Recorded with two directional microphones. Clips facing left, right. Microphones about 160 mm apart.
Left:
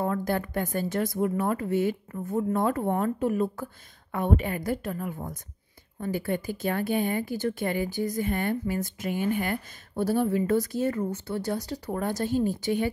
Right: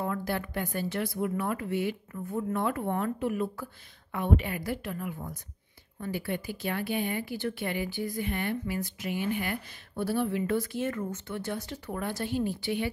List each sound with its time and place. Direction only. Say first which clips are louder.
0.0 s speech: left 4 dB; 45° left (ahead or behind)